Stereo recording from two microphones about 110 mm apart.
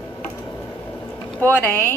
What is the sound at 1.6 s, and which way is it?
Speech, 20° left (ahead or behind).